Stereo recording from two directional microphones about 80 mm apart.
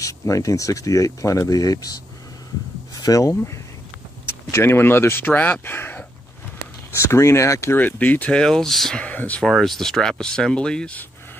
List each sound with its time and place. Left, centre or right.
0.0 s speech: left
4.3 s speech: left
7.8 s speech: left; by 9.0 s centre
9.0 s speech: centre
9.4 s speech: centre